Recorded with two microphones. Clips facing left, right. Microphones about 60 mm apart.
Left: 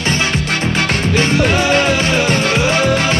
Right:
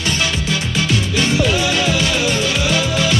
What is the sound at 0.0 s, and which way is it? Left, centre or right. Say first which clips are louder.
Music: left 3 dB; left.